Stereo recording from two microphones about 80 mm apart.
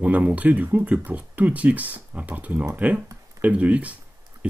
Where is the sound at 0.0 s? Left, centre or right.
Centre.